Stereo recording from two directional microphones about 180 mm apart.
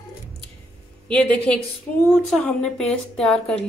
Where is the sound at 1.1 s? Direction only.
5° left (ahead or behind).